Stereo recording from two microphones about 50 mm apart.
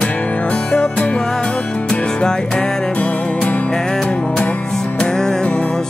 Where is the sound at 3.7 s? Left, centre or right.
Centre.